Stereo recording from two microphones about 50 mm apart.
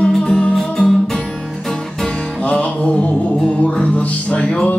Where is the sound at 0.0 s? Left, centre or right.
Centre.